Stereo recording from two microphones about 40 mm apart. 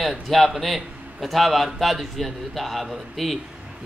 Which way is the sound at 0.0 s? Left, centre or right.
Centre.